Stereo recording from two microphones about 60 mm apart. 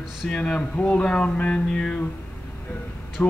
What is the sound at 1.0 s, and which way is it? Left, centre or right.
Music, centre.